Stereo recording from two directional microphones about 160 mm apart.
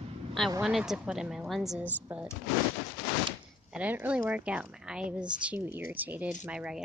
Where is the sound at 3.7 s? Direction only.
10° right (ahead or behind).